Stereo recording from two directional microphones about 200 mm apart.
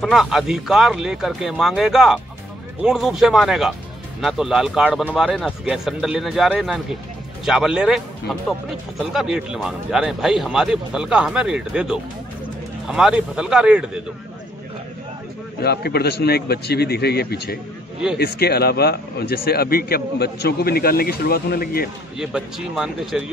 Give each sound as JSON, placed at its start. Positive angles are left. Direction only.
{"t": 0.0, "sound": "speech", "side_deg": 0}
{"t": 15.6, "sound": "speech", "side_deg": 55}
{"t": 22.2, "sound": "speech", "side_deg": -5}